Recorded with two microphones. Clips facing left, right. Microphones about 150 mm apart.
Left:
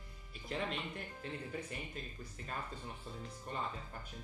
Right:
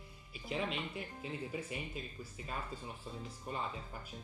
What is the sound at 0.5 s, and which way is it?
Speech, 5° right (ahead or behind).